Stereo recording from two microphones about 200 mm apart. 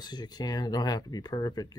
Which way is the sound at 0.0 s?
20° left (ahead or behind).